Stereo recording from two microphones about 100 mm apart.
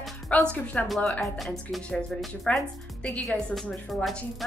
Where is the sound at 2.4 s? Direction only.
15° left (ahead or behind).